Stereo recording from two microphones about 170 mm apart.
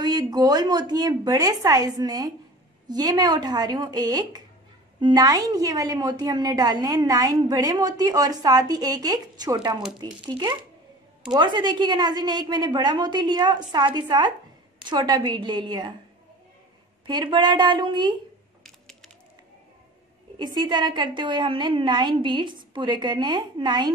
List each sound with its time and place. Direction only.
0.0 s a woman's voice: 25° right (ahead or behind)
17.0 s a woman's voice: 25° right (ahead or behind)
18.6 s a sound: centre (ahead or behind)
20.3 s a woman's voice: 25° right (ahead or behind)